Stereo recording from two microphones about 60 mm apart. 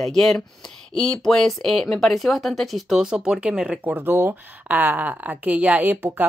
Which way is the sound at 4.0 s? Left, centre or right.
Right.